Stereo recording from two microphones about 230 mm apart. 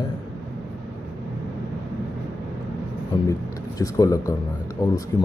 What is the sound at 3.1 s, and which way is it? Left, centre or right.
A man's voice, centre.